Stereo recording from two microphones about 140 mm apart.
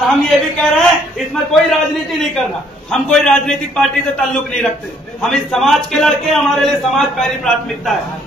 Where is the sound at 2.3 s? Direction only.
5° left (ahead or behind).